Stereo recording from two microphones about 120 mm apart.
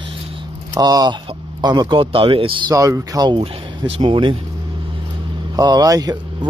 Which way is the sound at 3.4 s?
50° right (ahead or behind).